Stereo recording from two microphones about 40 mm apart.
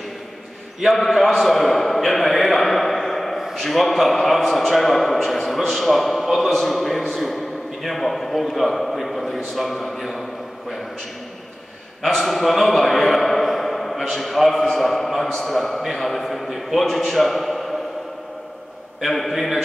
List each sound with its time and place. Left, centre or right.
0.8 s a sound: centre
3.5 s a man's voice: centre
12.0 s a man's voice: centre
18.9 s a man's voice: centre